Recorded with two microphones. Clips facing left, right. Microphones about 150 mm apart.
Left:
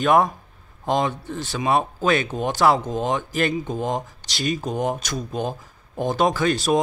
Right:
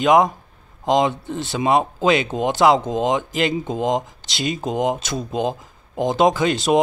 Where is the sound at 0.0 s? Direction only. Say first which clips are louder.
Right 3 dB; 20° right (ahead or behind).